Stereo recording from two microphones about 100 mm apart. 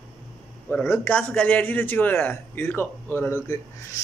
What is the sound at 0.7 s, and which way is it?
A man's voice, 20° left (ahead or behind).